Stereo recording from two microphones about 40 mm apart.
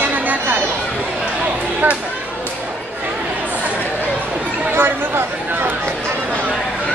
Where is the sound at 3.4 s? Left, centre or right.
Right.